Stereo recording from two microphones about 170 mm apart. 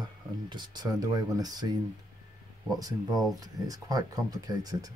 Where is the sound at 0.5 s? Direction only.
25° right (ahead or behind).